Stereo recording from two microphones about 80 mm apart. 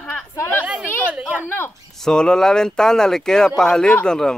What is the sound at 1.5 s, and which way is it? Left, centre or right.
Speech, left.